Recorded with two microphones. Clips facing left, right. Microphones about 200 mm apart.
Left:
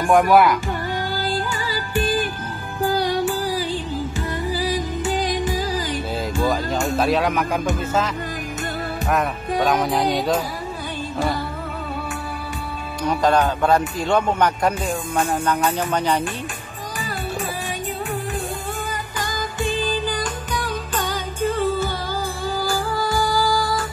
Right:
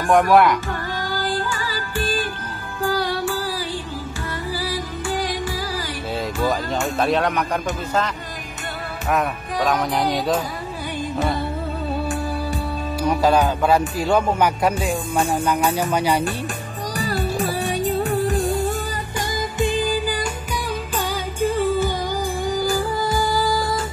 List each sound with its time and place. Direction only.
0.1 s speech: centre (ahead or behind)
1.2 s music: 15° left (ahead or behind)
6.4 s speech: centre (ahead or behind)
9.1 s speech: centre (ahead or behind)
13.0 s speech: 10° right (ahead or behind)
17.0 s music: 35° right (ahead or behind)
19.6 s music: 15° right (ahead or behind)